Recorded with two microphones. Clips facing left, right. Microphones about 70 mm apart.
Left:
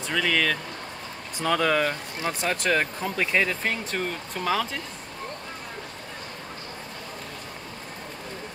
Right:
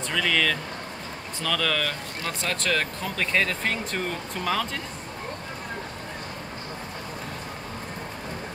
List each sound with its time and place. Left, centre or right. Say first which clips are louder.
0.1 s speech: left 1 dB; centre
1.4 s speech: left 4 dB; left; by 4.6 s centre